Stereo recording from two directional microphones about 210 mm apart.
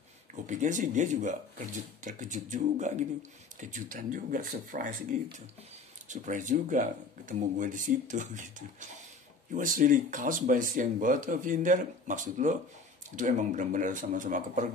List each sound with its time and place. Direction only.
0.5 s speech: 35° right (ahead or behind)
6.0 s speech: 35° right (ahead or behind)